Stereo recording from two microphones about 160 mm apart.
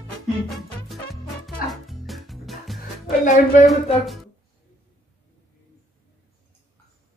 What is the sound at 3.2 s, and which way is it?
Speech, 50° left (ahead or behind).